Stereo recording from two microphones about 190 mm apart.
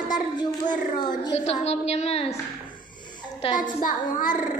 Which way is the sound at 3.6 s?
45° left (ahead or behind).